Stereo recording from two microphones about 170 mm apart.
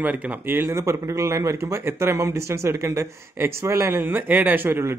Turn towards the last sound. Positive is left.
turn(degrees=-15)  # may be behind; listen again after turning